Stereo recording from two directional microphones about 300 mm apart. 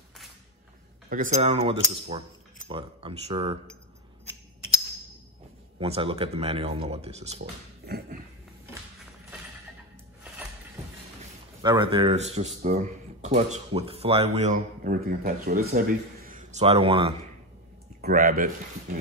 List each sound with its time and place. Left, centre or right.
1.1 s speech: right
5.8 s speech: centre
11.6 s a man's voice: centre
18.0 s speech: right